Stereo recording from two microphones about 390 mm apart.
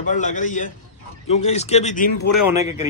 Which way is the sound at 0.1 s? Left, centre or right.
Centre.